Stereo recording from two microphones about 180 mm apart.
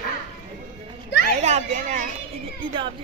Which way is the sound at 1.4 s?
40° right (ahead or behind).